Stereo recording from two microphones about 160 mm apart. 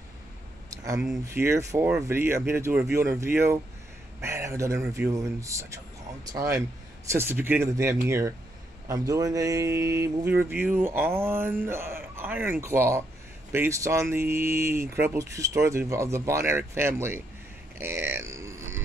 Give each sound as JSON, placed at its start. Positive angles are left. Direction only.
{"t": 0.7, "sound": "speech", "side_deg": -20}